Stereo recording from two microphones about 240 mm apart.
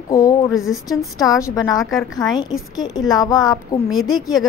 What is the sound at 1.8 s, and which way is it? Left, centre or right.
Speech, centre.